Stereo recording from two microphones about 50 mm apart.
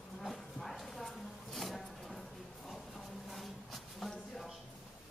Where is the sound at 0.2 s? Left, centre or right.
Centre.